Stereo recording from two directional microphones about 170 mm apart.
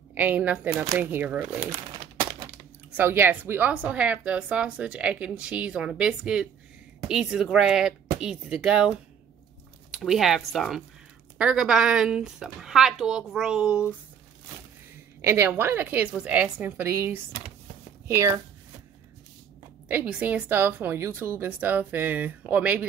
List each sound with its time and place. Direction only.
0.1 s a woman's voice: 10° right (ahead or behind)
1.6 s bird: 25° right (ahead or behind)
2.9 s a woman's voice: 15° right (ahead or behind)
15.2 s a woman's voice: 15° right (ahead or behind)
19.9 s a woman's voice: 10° right (ahead or behind)